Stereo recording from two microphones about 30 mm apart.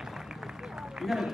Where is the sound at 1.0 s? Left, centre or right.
Centre.